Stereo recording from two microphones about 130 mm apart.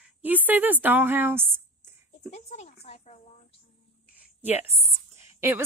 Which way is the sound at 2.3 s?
60° left (ahead or behind).